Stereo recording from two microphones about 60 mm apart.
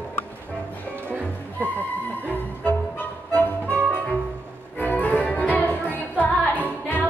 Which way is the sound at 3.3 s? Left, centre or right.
Left.